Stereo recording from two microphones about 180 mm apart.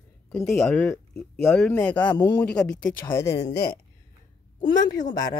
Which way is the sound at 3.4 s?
70° left (ahead or behind).